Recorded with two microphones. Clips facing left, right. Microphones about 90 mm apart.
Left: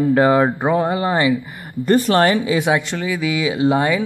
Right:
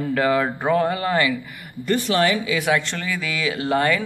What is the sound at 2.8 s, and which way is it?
Speech, 10° left (ahead or behind).